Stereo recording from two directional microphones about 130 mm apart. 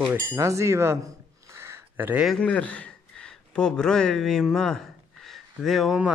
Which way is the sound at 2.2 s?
10° left (ahead or behind).